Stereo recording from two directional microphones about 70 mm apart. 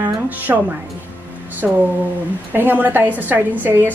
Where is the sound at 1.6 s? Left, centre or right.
Centre.